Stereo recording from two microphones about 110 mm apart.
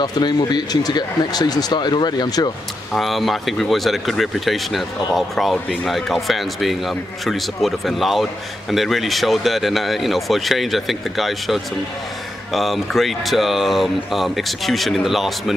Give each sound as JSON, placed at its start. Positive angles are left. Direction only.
{"t": 0.0, "sound": "speech", "side_deg": 40}
{"t": 2.9, "sound": "speech", "side_deg": 0}